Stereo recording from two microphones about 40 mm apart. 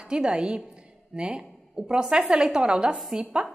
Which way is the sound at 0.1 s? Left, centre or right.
Right.